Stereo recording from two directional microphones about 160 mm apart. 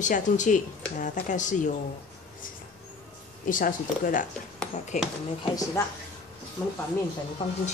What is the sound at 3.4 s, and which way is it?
Speech, 55° left (ahead or behind).